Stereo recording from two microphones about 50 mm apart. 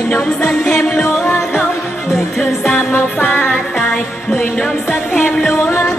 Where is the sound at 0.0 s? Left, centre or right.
Left.